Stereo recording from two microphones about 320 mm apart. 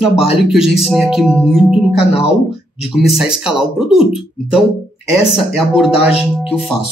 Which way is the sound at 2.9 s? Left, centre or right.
Centre.